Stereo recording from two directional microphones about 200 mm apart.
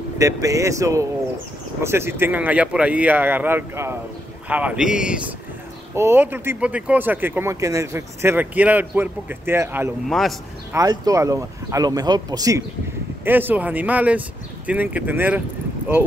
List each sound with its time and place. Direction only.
0.2 s speech: 15° right (ahead or behind)
10.0 s speech: centre (ahead or behind)
10.7 s speech: 15° right (ahead or behind)